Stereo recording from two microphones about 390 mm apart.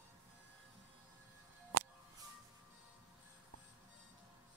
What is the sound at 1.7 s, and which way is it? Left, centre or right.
Music, right.